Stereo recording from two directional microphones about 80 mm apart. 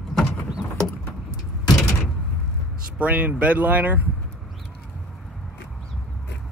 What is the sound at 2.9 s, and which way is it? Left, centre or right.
Speech, centre.